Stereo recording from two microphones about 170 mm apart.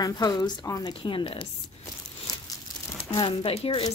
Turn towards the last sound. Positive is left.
turn(degrees=30)  # may be behind; listen again after turning